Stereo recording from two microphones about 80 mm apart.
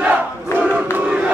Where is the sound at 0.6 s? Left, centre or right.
Centre.